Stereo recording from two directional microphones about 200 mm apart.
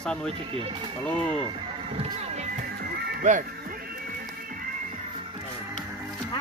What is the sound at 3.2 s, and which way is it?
Speech, 40° right (ahead or behind).